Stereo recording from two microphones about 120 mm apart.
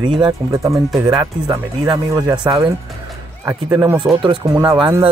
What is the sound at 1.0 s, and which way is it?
Speech, 35° right (ahead or behind).